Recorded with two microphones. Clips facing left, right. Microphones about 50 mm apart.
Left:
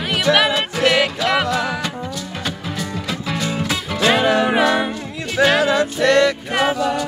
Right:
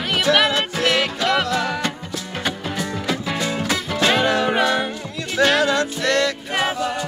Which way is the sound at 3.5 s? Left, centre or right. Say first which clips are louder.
Even; centre.